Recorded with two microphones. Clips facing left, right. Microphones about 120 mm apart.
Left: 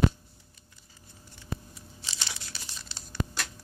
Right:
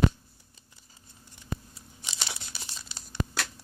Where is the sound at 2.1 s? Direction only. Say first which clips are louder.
Right 2 dB; 20° right (ahead or behind).